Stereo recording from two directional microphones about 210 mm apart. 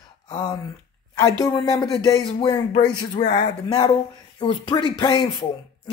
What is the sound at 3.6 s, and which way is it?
Speech, 20° left (ahead or behind).